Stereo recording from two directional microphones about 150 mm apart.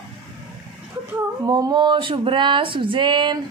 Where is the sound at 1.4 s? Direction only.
25° right (ahead or behind).